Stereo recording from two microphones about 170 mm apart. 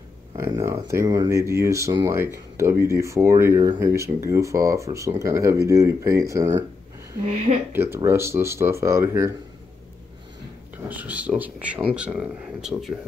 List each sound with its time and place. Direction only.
0.7 s speech: 15° right (ahead or behind)
7.7 s speech: 15° right (ahead or behind)
10.9 s speech: 10° right (ahead or behind)